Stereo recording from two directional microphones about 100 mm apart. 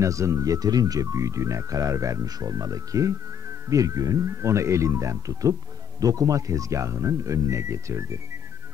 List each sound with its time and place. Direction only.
0.0 s speech: 30° right (ahead or behind)